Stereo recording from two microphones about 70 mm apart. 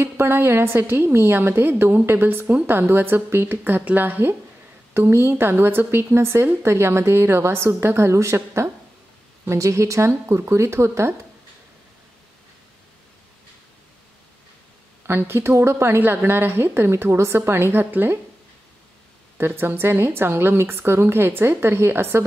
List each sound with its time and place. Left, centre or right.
0.0 s a woman's voice: right
9.5 s a woman's voice: right
15.0 s a woman's voice: right
19.3 s a woman's voice: right